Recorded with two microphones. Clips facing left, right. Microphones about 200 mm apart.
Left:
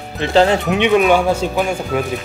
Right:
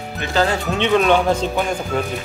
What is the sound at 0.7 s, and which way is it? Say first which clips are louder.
Speech: left 3 dB; 10° left (ahead or behind).